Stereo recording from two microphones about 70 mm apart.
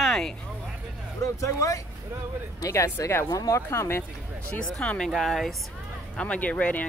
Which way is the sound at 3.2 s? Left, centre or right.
Left.